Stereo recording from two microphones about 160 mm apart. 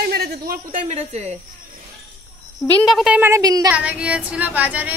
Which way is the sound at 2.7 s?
5° left (ahead or behind).